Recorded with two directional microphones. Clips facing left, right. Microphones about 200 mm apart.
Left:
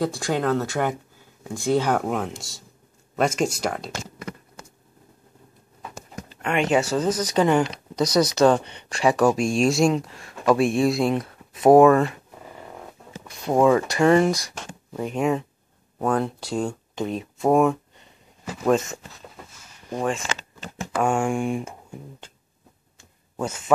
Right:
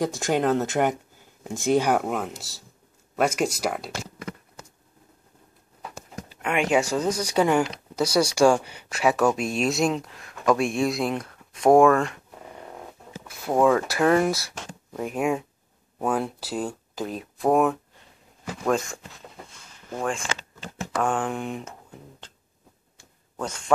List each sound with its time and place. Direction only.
0.2 s speech: 20° right (ahead or behind)
6.2 s speech: 10° right (ahead or behind)
13.3 s speech: centre (ahead or behind)
19.9 s speech: 15° left (ahead or behind)
23.3 s speech: 5° left (ahead or behind)